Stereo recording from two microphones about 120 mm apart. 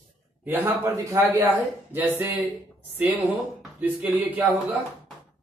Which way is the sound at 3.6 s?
10° right (ahead or behind).